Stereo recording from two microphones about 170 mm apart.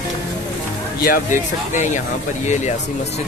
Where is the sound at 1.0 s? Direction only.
55° left (ahead or behind).